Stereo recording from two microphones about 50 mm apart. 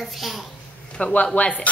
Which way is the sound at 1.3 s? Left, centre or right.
Left.